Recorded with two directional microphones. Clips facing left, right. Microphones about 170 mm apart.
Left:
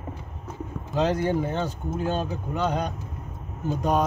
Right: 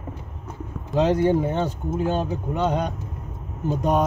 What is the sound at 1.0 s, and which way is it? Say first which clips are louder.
Speech: right 4 dB; 20° right (ahead or behind).